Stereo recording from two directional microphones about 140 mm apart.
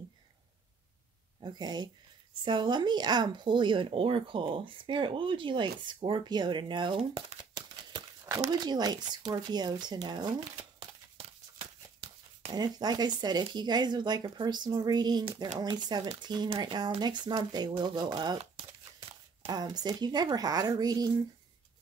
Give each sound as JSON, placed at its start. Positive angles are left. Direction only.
{"t": 1.4, "sound": "speech", "side_deg": -30}
{"t": 7.0, "sound": "speech", "side_deg": -45}
{"t": 7.5, "sound": "crumpling", "side_deg": -25}
{"t": 8.6, "sound": "speech", "side_deg": -30}
{"t": 12.5, "sound": "speech", "side_deg": -30}